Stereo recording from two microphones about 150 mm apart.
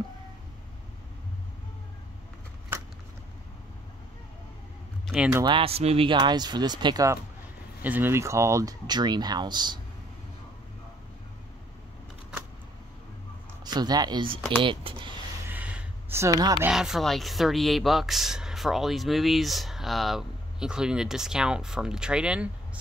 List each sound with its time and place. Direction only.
5.0 s a sound: 5° right (ahead or behind)
5.4 s speech: 30° right (ahead or behind)
7.8 s speech: 10° right (ahead or behind); by 9.8 s 30° right (ahead or behind)
13.7 s speech: 25° right (ahead or behind)
15.4 s a sound: 10° right (ahead or behind)
16.6 s speech: 5° right (ahead or behind)